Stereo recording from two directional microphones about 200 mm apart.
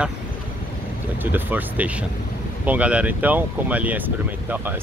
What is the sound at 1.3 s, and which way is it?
Speech, 10° right (ahead or behind).